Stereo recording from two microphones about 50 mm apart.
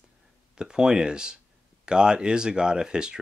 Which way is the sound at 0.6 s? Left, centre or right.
Centre.